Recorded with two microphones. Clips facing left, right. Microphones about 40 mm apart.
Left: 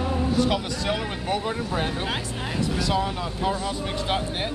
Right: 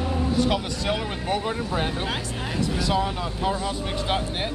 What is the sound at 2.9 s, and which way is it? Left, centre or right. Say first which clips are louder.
Speech: right 1 dB; centre.